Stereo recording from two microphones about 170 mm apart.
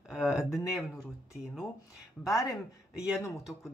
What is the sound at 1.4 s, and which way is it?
Speech, 5° right (ahead or behind).